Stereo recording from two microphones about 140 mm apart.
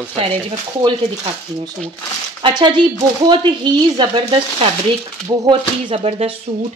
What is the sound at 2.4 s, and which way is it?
Speech, 30° right (ahead or behind).